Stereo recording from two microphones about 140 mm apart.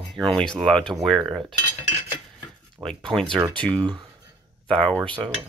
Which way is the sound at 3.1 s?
Centre (ahead or behind).